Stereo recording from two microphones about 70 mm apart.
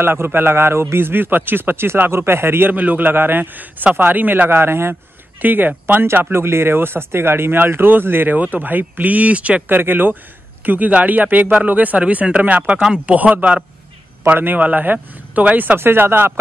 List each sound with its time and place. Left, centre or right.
0.0 s a man's voice: right